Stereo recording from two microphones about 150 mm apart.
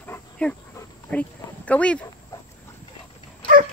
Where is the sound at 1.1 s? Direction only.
10° left (ahead or behind).